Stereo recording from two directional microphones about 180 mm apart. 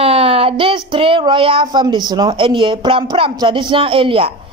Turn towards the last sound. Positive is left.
turn(degrees=-30)  # may be behind; listen again after turning